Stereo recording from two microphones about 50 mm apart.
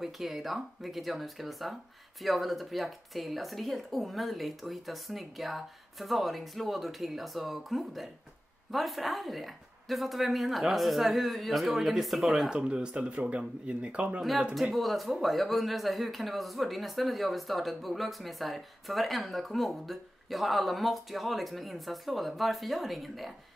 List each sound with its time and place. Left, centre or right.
0.0 s speech: centre
12.4 s speech: centre
14.5 s speech: centre